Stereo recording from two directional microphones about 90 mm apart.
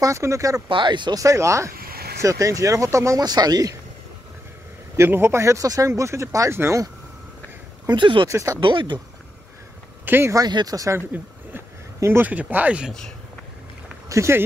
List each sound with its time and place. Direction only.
0.0 s speech: 35° right (ahead or behind)
0.7 s speech: 65° right (ahead or behind)
1.1 s speech: 35° right (ahead or behind)
3.2 s speech: 50° right (ahead or behind)
4.9 s speech: 25° right (ahead or behind)
7.9 s speech: 65° right (ahead or behind)
8.3 s speech: 35° right (ahead or behind)
8.5 s speech: 65° right (ahead or behind)
10.0 s speech: 25° right (ahead or behind)
10.3 s speech: 50° right (ahead or behind)
11.5 s speech: 25° right (ahead or behind)
14.0 s speech: 35° right (ahead or behind)